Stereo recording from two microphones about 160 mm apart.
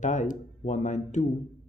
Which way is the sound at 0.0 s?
50° left (ahead or behind).